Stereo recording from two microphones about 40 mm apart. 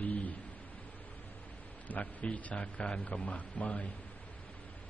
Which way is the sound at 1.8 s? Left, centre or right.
Left.